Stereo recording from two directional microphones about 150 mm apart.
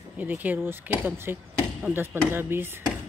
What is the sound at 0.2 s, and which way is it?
Speech, 10° right (ahead or behind).